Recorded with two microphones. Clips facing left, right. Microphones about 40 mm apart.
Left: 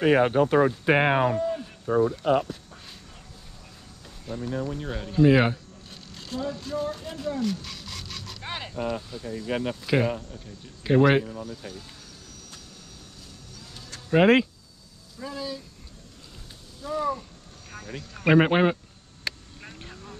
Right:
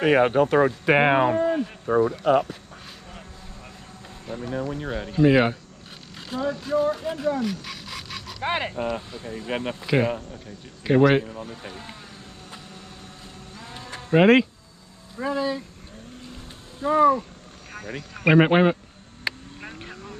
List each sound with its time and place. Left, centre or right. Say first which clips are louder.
0.0 s speech: right 2 dB; right
0.9 s speech: right 5 dB; right
2.2 s speech: right 3 dB; centre
4.5 s speech: right 3 dB; centre
8.4 s speech: right 7 dB; right
10.3 s speech: right 3 dB; centre
11.4 s speech: right 2 dB; right
13.5 s sheep: right 7 dB; right
14.1 s speech: right 2 dB; centre
15.1 s speech: right 9 dB; right
16.8 s speech: right 10 dB; right
17.6 s a sound: right 4 dB; centre
18.2 s speech: right 2 dB; centre
19.2 s vehicle: right 4 dB; right